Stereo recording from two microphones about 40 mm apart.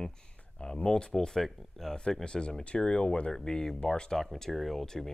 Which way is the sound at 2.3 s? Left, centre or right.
Left.